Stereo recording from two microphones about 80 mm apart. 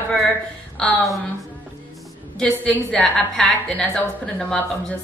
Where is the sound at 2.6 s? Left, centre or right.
Centre.